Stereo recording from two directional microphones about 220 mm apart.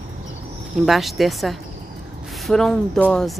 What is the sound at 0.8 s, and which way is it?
Speech, centre (ahead or behind).